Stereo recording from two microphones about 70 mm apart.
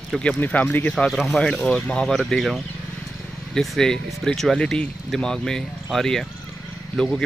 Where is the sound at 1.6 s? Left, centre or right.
Centre.